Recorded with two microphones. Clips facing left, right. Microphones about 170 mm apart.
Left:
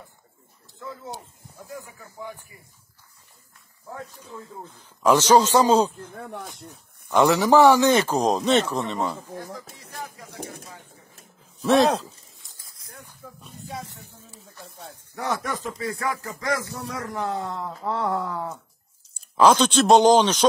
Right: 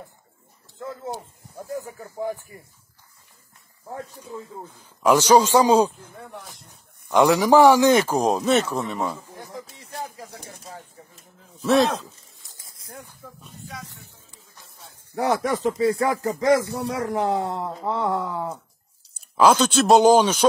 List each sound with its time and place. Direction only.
0.7 s a sound: 50° right (ahead or behind)
1.7 s speech: 40° right (ahead or behind)
4.2 s speech: 15° right (ahead or behind)
7.1 s speech: 15° right (ahead or behind)
9.4 s speech: 20° right (ahead or behind)
10.3 s speech: 60° left (ahead or behind)
11.6 s speech: centre (ahead or behind)
12.5 s a sound: 25° right (ahead or behind)
13.7 s music: 30° left (ahead or behind)
15.1 s speech: 30° right (ahead or behind)
16.6 s speech: 65° right (ahead or behind)
16.9 s speech: 30° right (ahead or behind)
17.8 s speech: centre (ahead or behind)
18.3 s speech: 10° right (ahead or behind)